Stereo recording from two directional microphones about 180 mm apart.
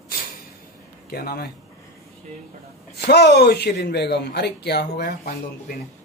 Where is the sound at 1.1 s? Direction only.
60° left (ahead or behind).